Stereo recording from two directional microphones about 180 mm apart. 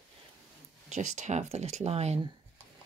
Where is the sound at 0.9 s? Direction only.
40° right (ahead or behind).